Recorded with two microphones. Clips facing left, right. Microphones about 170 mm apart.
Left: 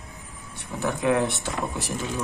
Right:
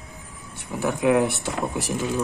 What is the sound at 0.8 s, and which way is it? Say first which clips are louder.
Speech: right 3 dB; 15° right (ahead or behind).